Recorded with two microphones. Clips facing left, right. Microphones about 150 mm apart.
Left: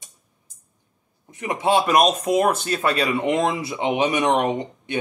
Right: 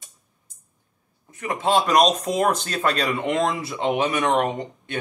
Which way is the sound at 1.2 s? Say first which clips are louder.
Left 2 dB; 20° left (ahead or behind).